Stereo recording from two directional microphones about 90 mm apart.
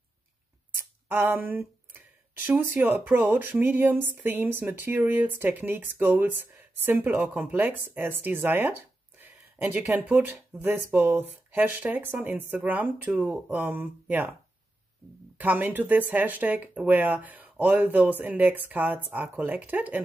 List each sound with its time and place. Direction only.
0.7 s speech: 25° right (ahead or behind)
15.3 s speech: 20° right (ahead or behind)